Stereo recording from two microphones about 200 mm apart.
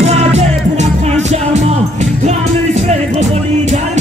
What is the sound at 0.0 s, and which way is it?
Music, 35° right (ahead or behind).